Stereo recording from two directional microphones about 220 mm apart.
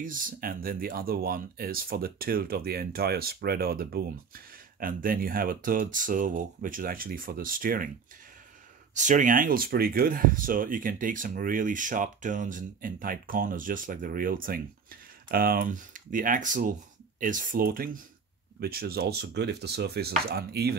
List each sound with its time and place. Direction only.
0.0 s speech: 40° right (ahead or behind)
8.9 s speech: 35° right (ahead or behind)